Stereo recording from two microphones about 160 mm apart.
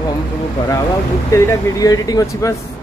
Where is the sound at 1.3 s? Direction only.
25° left (ahead or behind).